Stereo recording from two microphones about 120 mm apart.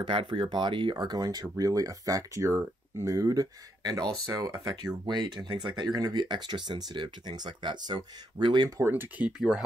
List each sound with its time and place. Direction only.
0.0 s speech: 40° right (ahead or behind); by 9.3 s 20° right (ahead or behind)